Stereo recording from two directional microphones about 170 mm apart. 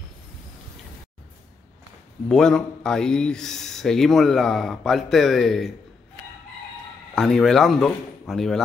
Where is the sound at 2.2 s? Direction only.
5° left (ahead or behind).